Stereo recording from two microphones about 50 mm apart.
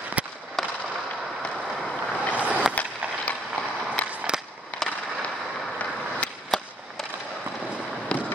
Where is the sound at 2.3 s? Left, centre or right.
Right.